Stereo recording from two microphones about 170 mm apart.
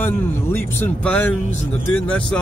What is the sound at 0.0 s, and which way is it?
Speech, 15° left (ahead or behind).